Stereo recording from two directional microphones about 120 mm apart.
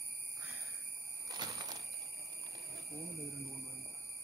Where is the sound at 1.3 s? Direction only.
35° right (ahead or behind).